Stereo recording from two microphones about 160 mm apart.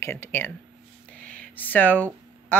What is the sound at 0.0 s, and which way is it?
Speech, 15° left (ahead or behind).